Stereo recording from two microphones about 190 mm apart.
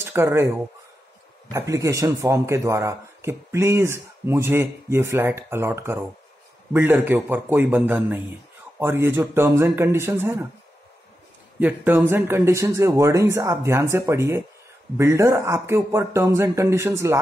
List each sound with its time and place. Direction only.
0.0 s speech: 10° right (ahead or behind)
1.5 s speech: 15° right (ahead or behind)
11.6 s speech: 10° right (ahead or behind)